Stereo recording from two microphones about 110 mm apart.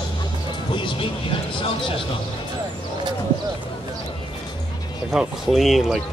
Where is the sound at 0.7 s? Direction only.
50° left (ahead or behind).